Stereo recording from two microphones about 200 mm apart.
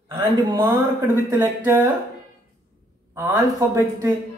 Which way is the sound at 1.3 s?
10° right (ahead or behind).